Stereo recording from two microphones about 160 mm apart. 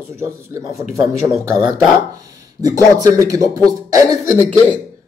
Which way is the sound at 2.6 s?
20° right (ahead or behind).